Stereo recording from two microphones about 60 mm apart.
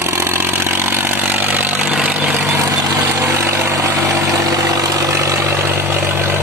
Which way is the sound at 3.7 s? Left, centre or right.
Right.